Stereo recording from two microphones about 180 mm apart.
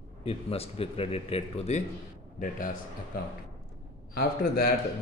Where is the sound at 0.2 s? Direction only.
35° left (ahead or behind).